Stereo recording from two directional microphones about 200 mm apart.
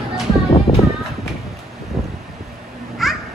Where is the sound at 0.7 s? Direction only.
30° left (ahead or behind).